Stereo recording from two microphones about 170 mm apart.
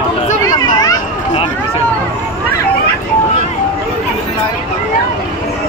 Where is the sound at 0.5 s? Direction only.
20° left (ahead or behind).